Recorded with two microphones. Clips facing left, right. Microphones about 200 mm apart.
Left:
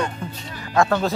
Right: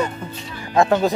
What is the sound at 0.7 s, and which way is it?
Speech, 15° right (ahead or behind).